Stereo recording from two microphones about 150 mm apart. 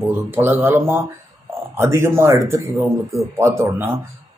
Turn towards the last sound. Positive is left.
turn(degrees=-15)  # may be behind; listen again after turning